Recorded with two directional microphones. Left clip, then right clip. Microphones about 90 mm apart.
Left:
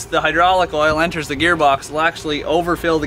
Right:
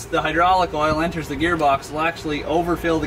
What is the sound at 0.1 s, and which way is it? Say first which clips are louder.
Speech: left 3 dB; 10° left (ahead or behind).